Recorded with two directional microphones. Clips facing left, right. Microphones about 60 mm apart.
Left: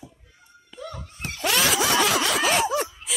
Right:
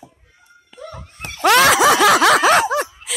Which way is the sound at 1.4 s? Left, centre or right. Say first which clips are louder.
Right 11 dB; right.